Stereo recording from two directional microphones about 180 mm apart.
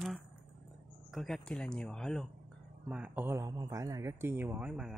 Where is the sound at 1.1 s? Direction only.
Centre (ahead or behind).